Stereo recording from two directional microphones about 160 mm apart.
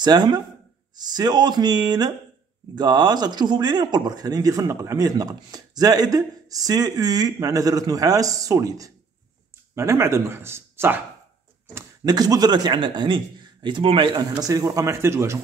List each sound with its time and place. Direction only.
0.0 s speech: 25° right (ahead or behind)